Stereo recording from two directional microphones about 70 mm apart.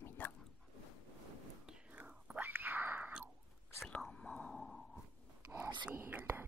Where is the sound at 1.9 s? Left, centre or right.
Right.